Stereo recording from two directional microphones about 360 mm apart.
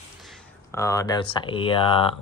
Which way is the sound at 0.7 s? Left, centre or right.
Centre.